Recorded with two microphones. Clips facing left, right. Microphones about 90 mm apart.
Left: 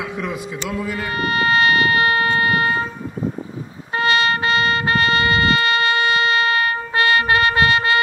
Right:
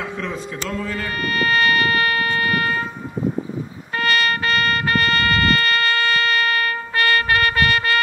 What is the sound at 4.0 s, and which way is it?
Music, 20° left (ahead or behind).